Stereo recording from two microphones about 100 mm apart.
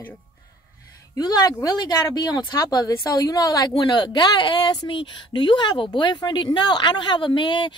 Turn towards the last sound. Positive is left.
turn(degrees=50)  # may be behind; listen again after turning